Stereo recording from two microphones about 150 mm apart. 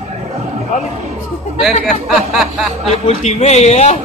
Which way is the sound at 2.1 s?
Centre (ahead or behind).